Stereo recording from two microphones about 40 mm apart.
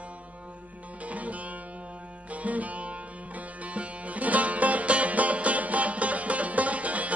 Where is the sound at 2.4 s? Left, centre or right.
Right.